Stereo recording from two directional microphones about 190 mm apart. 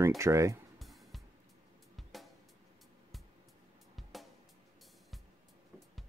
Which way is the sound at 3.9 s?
Centre (ahead or behind).